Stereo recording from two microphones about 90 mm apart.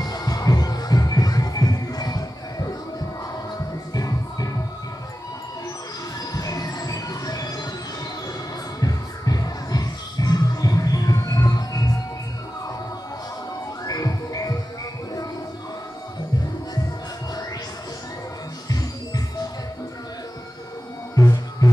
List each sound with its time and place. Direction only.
0.0 s music: 45° left (ahead or behind)
3.9 s music: 45° left (ahead or behind)
6.3 s music: 40° left (ahead or behind)
8.7 s music: 45° left (ahead or behind)
13.8 s music: 45° left (ahead or behind)
21.1 s music: 40° left (ahead or behind)